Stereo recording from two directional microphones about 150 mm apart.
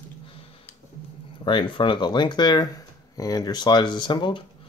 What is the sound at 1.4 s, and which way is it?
Speech, 35° left (ahead or behind).